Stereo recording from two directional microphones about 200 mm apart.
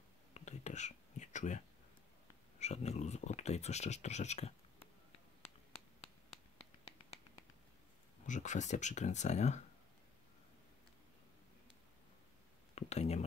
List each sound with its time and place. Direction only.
0.3 s whispering: 35° left (ahead or behind)
2.6 s speech: 35° left (ahead or behind)
6.6 s finger snapping: 30° left (ahead or behind)
8.3 s speech: 35° left (ahead or behind)
12.7 s speech: 35° left (ahead or behind)